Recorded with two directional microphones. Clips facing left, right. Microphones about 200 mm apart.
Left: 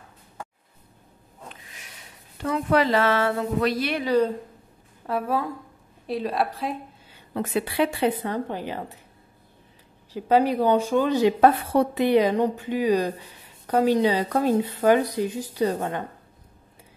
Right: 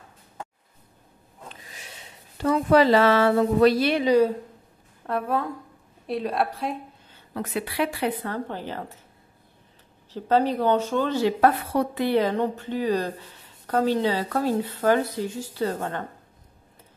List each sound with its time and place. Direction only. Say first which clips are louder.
2.4 s speech: right 4 dB; 35° right (ahead or behind)
5.0 s a woman's voice: even; 5° left (ahead or behind)
7.2 s a woman's voice: left 3 dB; 25° left (ahead or behind)
8.2 s a woman's voice: left 2 dB; 15° left (ahead or behind)
10.1 s a woman's voice: left 2 dB; 10° left (ahead or behind)